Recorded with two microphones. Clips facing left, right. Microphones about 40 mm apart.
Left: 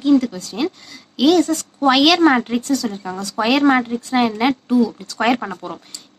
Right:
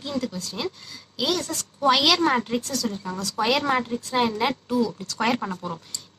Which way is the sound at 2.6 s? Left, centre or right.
Left.